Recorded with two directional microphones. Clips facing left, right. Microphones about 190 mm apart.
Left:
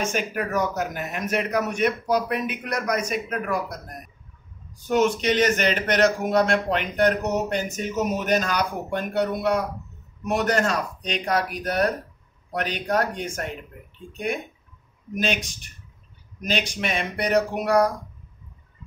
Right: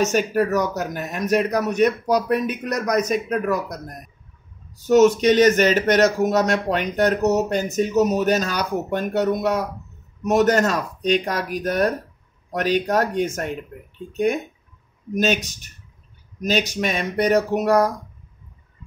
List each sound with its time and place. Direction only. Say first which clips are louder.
0.1 s speech: right 6 dB; 40° right (ahead or behind)
4.9 s speech: right 7 dB; 40° right (ahead or behind)
16.3 s speech: right 5 dB; 40° right (ahead or behind)